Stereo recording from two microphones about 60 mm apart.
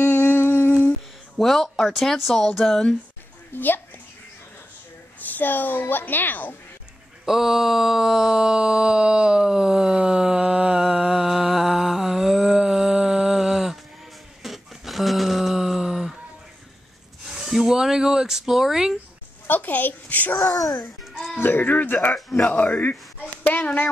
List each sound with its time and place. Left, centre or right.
0.0 s humming: left
1.4 s speech: centre
3.5 s a woman's voice: left
5.2 s a woman's voice: left
7.2 s a sound: centre
17.3 s a sound: centre
19.4 s a child's voice: left
21.4 s a woman's voice: left
22.1 s speech: centre
22.6 s speech: left
23.4 s a sound: left